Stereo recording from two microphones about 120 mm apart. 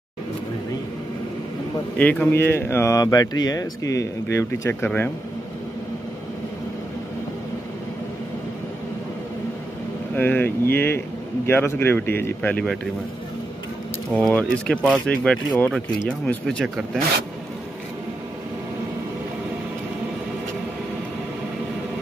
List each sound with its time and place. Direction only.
2.0 s speech: 10° left (ahead or behind)
10.1 s speech: 15° left (ahead or behind)
14.1 s speech: 10° left (ahead or behind)
16.6 s speech: 5° right (ahead or behind)